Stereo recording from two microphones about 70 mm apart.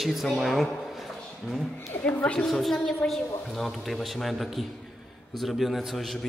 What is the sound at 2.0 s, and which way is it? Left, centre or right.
Speech, centre.